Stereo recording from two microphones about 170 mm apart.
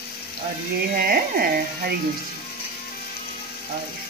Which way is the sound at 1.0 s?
65° right (ahead or behind).